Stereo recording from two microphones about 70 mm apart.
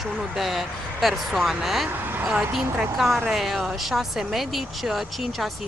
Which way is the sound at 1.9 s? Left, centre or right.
Right.